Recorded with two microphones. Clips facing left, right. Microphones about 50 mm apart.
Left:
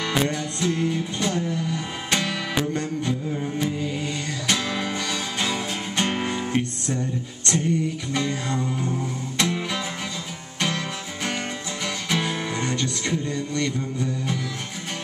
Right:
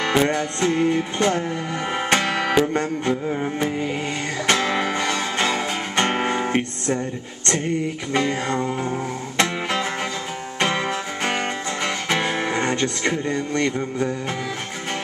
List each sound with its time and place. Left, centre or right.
0.0 s music: right